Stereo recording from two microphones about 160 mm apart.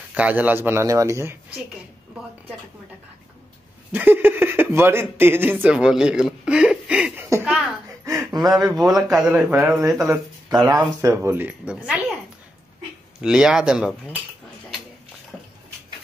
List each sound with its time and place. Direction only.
0.1 s a man's voice: 10° right (ahead or behind)
3.9 s speech: 10° right (ahead or behind)
7.4 s a sound: 5° right (ahead or behind)
8.0 s a sound: 20° right (ahead or behind)
8.6 s a man's voice: centre (ahead or behind)
9.9 s speech: 5° right (ahead or behind)
10.8 s a man's voice: 20° right (ahead or behind)
13.2 s speech: 5° right (ahead or behind)